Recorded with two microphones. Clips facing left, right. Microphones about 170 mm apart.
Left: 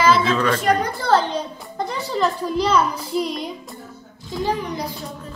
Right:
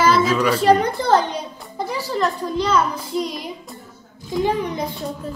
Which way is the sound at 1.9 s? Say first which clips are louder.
Even; 5° right (ahead or behind).